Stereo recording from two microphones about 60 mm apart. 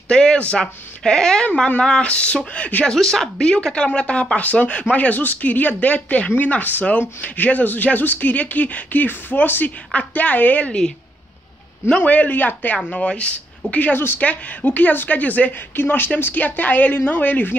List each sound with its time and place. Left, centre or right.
0.1 s speech: centre
3.0 s speech: centre; by 10.7 s left
11.9 s speech: left
12.7 s speech: centre
13.9 s a woman's voice: left
14.2 s speech: left